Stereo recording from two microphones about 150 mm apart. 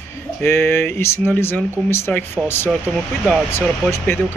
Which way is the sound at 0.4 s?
15° left (ahead or behind).